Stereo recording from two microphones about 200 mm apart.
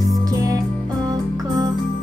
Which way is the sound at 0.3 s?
15° right (ahead or behind).